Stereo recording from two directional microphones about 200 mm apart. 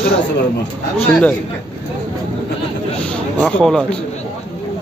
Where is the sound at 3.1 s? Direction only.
5° left (ahead or behind).